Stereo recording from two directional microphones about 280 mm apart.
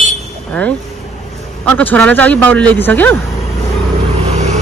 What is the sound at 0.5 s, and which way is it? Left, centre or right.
A man's voice, centre.